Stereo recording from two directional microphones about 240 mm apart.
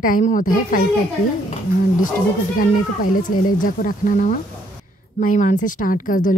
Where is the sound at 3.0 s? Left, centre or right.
Left.